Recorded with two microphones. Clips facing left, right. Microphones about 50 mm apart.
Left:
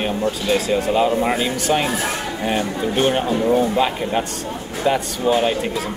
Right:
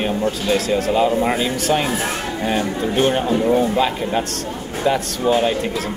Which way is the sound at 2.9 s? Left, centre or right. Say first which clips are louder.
Right 1 dB; centre.